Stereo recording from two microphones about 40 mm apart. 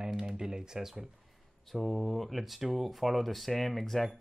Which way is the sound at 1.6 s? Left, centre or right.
Centre.